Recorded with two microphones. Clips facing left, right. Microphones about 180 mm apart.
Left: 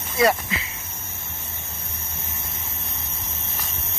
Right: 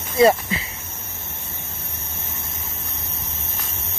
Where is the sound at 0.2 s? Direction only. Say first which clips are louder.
Right 5 dB; 25° right (ahead or behind).